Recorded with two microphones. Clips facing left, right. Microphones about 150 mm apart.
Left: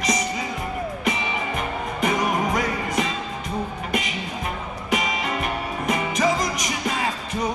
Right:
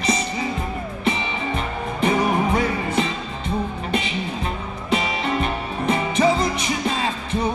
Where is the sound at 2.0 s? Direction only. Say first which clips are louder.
Right 3 dB; 30° right (ahead or behind).